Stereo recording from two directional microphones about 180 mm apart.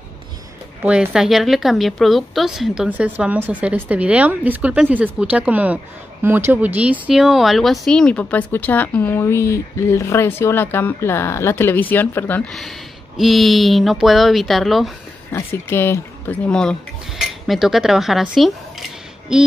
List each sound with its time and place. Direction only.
0.8 s a woman's voice: 5° right (ahead or behind)
15.3 s speech: 15° left (ahead or behind)
17.2 s cutlery: centre (ahead or behind)